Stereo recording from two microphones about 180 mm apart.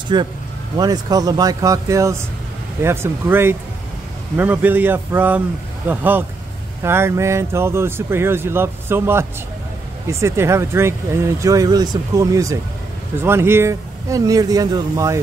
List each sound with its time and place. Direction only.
0.1 s speech: 25° right (ahead or behind)